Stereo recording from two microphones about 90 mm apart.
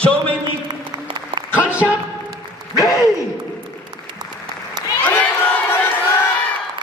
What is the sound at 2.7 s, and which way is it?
Speech, 35° left (ahead or behind).